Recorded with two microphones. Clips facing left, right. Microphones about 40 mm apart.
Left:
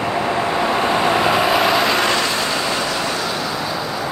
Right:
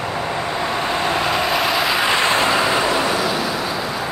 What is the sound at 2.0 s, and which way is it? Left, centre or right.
Vehicle, right.